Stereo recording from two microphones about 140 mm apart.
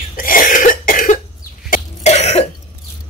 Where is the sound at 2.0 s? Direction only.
55° left (ahead or behind).